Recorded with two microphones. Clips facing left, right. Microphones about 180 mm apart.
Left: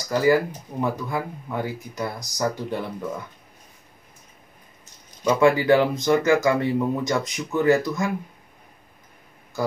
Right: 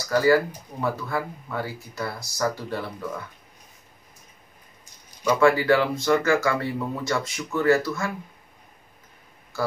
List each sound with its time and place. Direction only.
0.0 s speech: 15° left (ahead or behind)
5.2 s speech: 20° left (ahead or behind)